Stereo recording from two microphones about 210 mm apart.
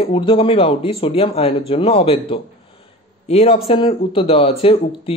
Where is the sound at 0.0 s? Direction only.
25° left (ahead or behind).